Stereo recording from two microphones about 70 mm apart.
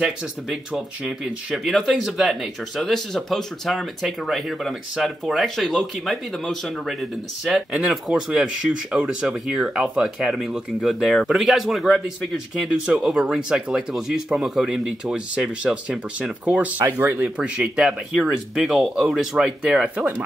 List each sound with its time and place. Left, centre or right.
0.0 s speech: centre
1.5 s speech: centre
12.6 s speech: centre
17.4 s speech: centre